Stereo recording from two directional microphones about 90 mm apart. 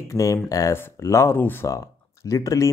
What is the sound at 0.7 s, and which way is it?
Speech, 30° left (ahead or behind).